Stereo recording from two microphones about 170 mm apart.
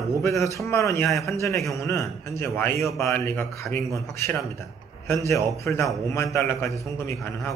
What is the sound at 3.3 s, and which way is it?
Speech, 10° left (ahead or behind).